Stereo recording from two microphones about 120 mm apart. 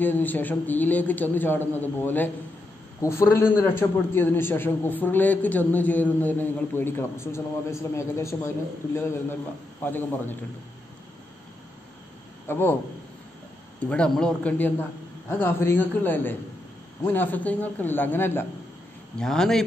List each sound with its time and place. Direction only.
0.0 s a man's voice: 15° left (ahead or behind)
12.4 s a man's voice: 15° left (ahead or behind)
13.7 s a man's voice: 10° left (ahead or behind)
19.1 s speech: 5° left (ahead or behind)